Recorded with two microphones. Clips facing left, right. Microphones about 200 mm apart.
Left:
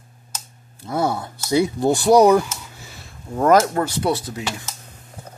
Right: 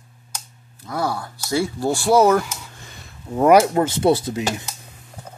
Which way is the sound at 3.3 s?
10° right (ahead or behind).